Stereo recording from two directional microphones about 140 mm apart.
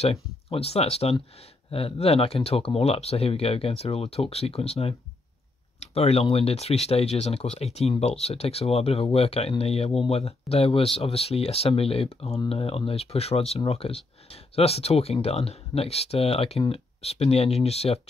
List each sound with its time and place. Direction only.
0.0 s speech: 45° left (ahead or behind)